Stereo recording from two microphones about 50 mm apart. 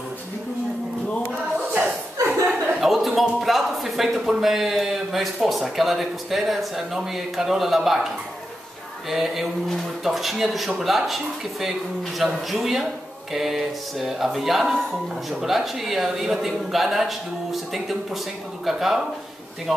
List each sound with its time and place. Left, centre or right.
2.2 s chuckle: right
2.8 s a sound: centre
3.2 s speech: centre
9.1 s speech: centre
12.2 s speech: centre